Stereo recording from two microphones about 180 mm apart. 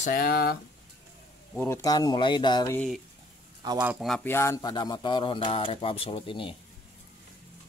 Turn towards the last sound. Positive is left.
turn(degrees=30)  # may be behind; listen again after turning